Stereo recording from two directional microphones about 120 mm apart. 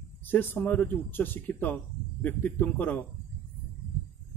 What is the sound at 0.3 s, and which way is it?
Speech, 15° left (ahead or behind).